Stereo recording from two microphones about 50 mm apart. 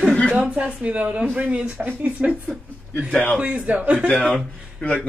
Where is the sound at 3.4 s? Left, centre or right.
Right.